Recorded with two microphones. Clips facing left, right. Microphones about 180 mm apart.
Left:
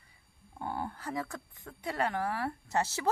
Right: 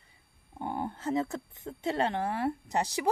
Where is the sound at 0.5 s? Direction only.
20° right (ahead or behind).